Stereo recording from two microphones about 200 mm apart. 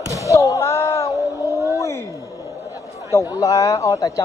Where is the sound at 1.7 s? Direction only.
15° left (ahead or behind).